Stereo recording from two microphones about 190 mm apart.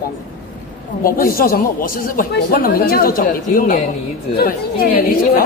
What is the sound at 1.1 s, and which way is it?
Speech, 50° left (ahead or behind).